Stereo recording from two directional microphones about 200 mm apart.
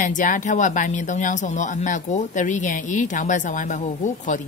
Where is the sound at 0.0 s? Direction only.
40° left (ahead or behind).